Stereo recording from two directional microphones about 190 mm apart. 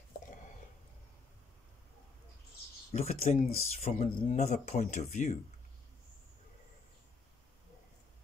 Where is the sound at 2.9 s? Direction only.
35° left (ahead or behind).